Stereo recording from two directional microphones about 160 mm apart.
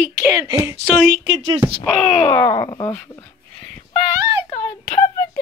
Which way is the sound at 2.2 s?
20° left (ahead or behind).